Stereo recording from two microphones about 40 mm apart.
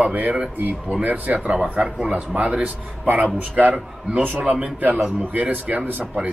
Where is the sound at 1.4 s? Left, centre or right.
Right.